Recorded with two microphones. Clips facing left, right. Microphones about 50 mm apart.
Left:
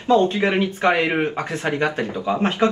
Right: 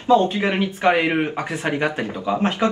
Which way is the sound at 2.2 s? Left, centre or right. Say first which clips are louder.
Even; centre.